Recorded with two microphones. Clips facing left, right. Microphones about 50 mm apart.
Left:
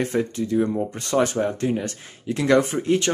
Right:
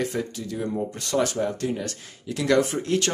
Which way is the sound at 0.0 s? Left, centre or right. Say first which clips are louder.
Left 5 dB; left.